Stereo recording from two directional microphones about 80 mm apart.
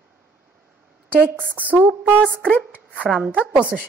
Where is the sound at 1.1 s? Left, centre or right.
Right.